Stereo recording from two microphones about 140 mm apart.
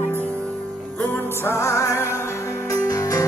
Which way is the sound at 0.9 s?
15° left (ahead or behind).